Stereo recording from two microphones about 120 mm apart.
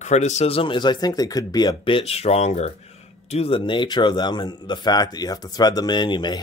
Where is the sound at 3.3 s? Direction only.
55° left (ahead or behind).